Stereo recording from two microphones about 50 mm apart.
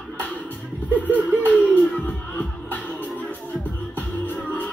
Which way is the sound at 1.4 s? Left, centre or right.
Left.